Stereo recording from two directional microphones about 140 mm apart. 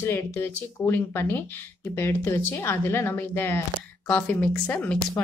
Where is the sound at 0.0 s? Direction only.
15° left (ahead or behind).